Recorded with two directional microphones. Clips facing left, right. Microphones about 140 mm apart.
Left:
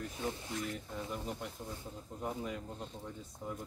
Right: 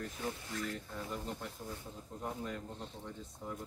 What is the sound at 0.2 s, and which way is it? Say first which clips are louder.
Speech: left 2 dB; 20° left (ahead or behind).